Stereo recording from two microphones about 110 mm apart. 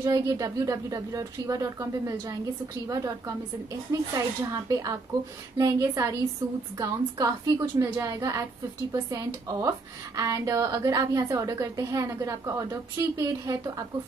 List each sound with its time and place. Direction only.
0.0 s a woman's voice: 30° right (ahead or behind)